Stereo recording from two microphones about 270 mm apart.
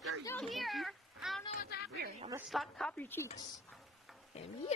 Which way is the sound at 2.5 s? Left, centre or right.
Centre.